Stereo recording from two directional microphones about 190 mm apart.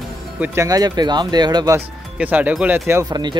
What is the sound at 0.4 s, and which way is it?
Speech, 15° right (ahead or behind).